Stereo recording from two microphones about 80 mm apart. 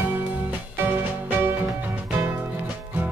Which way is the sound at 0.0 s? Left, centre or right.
Right.